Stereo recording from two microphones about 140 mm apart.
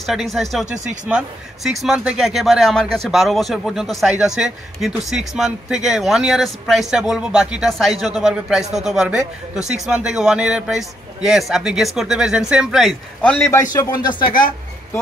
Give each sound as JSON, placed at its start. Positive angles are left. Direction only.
{"t": 0.0, "sound": "speech", "side_deg": 0}
{"t": 13.2, "sound": "a man's voice", "side_deg": 10}
{"t": 13.7, "sound": "speech", "side_deg": 30}